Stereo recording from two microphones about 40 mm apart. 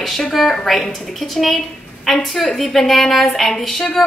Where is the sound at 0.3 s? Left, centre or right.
Centre.